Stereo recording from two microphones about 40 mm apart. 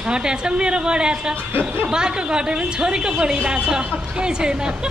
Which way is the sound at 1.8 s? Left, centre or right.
Centre.